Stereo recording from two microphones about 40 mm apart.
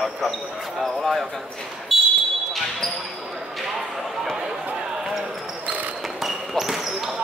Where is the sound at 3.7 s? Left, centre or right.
Centre.